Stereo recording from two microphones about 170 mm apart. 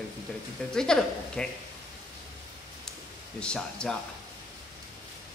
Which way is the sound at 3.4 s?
5° left (ahead or behind).